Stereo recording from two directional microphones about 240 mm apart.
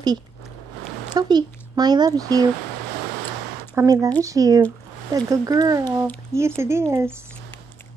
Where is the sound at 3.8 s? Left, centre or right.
Centre.